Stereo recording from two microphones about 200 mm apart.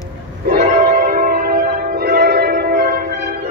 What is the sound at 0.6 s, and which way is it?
Music, 40° right (ahead or behind).